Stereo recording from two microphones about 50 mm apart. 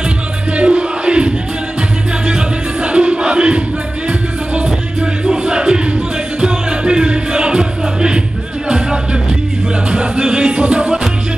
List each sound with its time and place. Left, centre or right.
0.5 s crowd: right
2.2 s music: right